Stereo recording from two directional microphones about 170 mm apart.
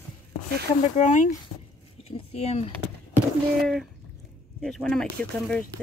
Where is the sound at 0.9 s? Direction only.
45° left (ahead or behind).